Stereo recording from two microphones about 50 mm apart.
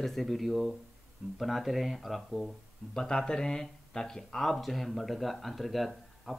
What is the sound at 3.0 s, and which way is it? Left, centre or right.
Speech, centre.